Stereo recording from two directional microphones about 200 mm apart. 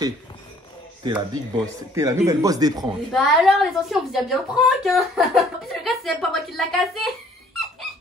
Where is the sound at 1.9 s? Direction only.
15° right (ahead or behind).